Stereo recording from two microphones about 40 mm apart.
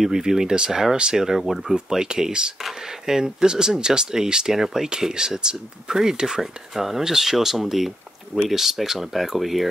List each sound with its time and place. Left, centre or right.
0.0 s speech: centre